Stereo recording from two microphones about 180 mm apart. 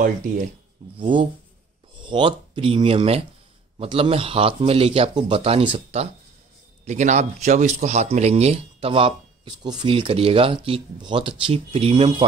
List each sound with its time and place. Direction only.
0.9 s speech: 25° right (ahead or behind)